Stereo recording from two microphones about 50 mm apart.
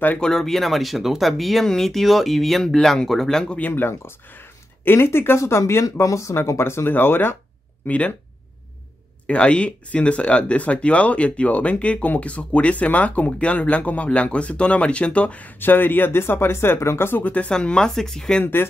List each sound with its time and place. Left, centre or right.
0.2 s speech: centre
3.4 s speech: left
3.7 s speech: left
5.4 s speech: left
7.8 s speech: left
9.3 s speech: left
15.6 s speech: left
17.2 s speech: left
17.5 s speech: centre
18.4 s speech: left